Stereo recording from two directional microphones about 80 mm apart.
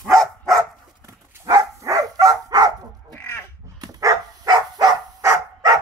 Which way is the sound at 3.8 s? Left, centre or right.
Right.